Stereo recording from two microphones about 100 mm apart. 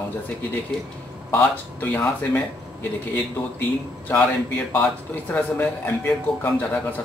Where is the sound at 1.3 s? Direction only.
20° left (ahead or behind).